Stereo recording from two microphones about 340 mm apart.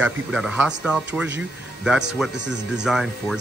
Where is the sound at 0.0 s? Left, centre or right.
Centre.